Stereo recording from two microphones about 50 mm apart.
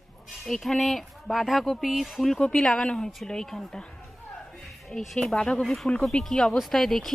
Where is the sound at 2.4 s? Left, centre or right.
Centre.